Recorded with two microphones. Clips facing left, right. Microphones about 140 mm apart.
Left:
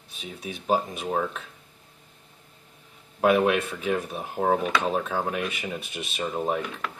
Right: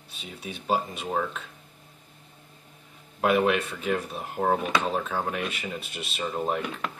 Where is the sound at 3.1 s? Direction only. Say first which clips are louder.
Left 2 dB; 5° left (ahead or behind).